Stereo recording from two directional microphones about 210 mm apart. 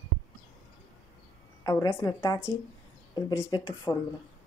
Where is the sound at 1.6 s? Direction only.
15° left (ahead or behind).